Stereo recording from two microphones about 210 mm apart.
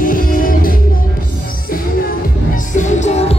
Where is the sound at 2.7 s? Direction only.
35° left (ahead or behind).